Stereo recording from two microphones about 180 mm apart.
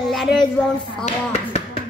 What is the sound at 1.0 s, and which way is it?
Speech, 35° left (ahead or behind).